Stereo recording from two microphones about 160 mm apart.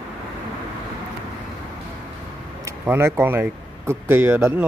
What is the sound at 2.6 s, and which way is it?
Speech, 15° right (ahead or behind).